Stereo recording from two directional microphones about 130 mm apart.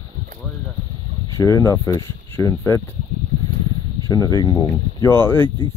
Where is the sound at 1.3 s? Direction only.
25° left (ahead or behind).